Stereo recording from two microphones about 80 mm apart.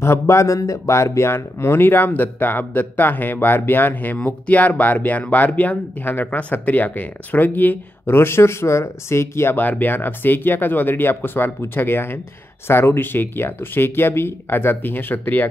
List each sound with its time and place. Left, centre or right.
0.0 s speech: left